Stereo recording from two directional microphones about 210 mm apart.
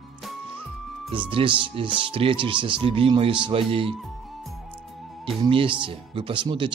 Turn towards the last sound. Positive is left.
turn(degrees=-25)  # may be behind; listen again after turning